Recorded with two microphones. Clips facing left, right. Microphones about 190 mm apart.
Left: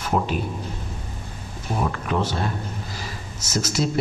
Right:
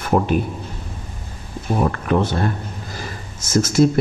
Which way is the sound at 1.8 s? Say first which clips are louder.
Right 5 dB; 55° right (ahead or behind).